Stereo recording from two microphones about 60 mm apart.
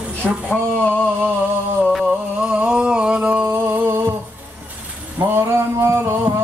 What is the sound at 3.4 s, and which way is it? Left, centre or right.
Music, right.